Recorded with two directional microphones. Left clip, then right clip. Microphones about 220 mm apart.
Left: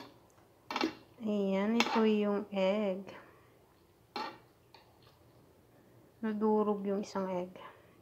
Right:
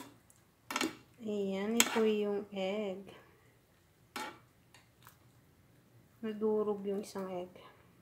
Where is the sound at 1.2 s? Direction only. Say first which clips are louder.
Left 4 dB; 10° left (ahead or behind).